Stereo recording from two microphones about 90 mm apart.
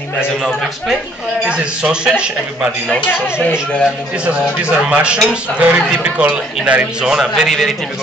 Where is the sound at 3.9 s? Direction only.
10° right (ahead or behind).